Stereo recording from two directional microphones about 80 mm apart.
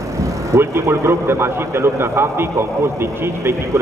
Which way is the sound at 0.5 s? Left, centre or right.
Right.